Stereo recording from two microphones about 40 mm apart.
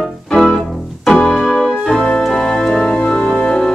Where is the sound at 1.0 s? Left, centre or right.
Centre.